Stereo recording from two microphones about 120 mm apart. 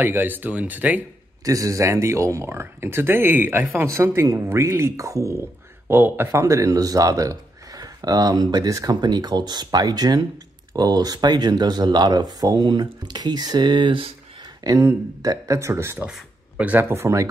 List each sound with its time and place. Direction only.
0.0 s speech: 15° right (ahead or behind)
1.4 s speech: 30° right (ahead or behind); by 14.1 s 45° right (ahead or behind)
14.6 s speech: 25° right (ahead or behind)
16.1 s a sound: 10° right (ahead or behind)
16.9 s speech: 25° right (ahead or behind)